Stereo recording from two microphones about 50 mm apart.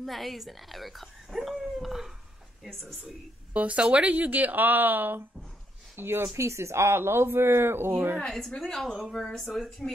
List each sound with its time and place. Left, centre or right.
0.0 s speech: centre
1.6 s dog: centre
3.5 s speech: right
5.9 s speech: right
6.2 s speech: right
8.2 s a woman's voice: centre